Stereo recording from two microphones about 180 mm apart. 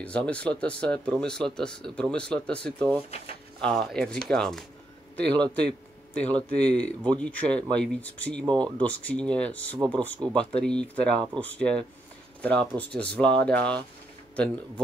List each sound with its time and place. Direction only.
0.0 s speech: 5° left (ahead or behind)
8.5 s speech: 25° right (ahead or behind)
8.8 s speech: 5° left (ahead or behind)